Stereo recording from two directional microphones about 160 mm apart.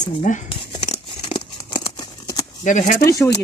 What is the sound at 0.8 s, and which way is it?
Tearing, 35° left (ahead or behind).